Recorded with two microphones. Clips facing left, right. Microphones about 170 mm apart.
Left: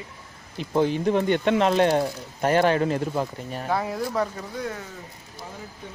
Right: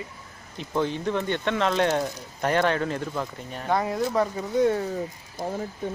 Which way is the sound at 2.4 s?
30° left (ahead or behind).